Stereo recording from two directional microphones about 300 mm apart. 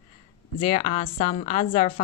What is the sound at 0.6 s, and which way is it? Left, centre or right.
Speech, centre.